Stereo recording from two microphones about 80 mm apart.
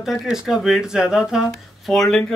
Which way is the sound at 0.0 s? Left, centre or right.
Centre.